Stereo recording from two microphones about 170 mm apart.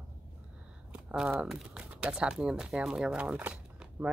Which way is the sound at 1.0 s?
5° right (ahead or behind).